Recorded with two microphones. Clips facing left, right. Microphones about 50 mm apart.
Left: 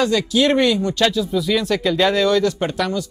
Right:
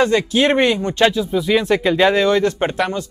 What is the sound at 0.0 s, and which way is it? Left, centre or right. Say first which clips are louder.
Speech: right 2 dB; right.